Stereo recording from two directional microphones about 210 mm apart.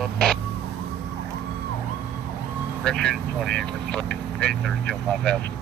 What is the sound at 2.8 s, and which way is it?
Speech, 5° left (ahead or behind).